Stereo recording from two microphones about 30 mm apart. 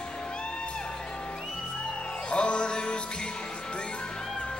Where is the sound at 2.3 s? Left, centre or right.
Left.